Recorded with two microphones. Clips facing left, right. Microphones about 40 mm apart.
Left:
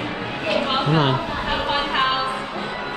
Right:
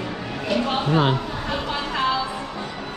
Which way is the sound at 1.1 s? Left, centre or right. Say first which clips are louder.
Left 3 dB; left.